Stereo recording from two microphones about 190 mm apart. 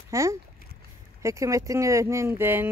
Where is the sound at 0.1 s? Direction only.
15° right (ahead or behind).